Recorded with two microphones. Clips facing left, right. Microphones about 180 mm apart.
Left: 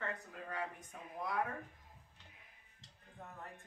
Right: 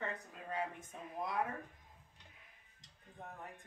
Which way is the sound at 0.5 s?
25° right (ahead or behind).